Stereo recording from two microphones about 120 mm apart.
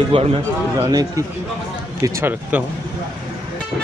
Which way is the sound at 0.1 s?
55° right (ahead or behind).